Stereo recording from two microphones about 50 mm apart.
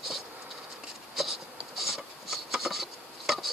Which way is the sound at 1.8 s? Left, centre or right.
Centre.